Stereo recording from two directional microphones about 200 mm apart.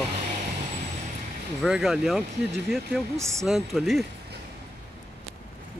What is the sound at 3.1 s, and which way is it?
Speech, 15° right (ahead or behind).